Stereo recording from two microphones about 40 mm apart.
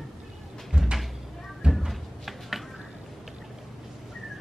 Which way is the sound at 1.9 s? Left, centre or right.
Centre.